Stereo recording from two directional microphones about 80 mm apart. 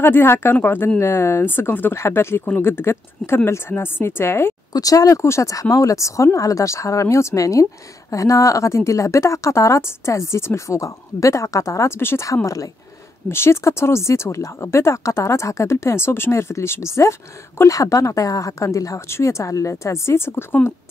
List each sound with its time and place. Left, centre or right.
0.0 s speech: left
4.7 s speech: left
5.2 s a woman's voice: left
12.4 s speech: left
13.3 s a woman's voice: left